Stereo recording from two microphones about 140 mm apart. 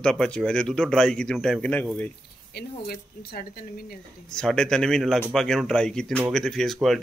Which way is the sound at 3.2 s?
90° left.